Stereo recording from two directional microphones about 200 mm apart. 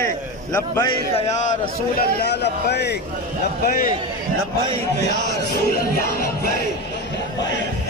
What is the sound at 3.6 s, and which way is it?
Music, 45° left (ahead or behind).